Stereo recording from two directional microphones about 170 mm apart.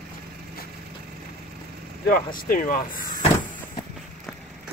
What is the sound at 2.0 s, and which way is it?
Speech, 55° left (ahead or behind).